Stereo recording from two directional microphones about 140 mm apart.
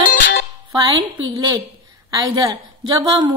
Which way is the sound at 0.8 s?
30° right (ahead or behind).